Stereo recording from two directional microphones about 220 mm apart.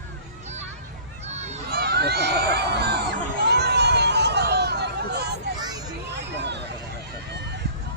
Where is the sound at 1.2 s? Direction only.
30° right (ahead or behind).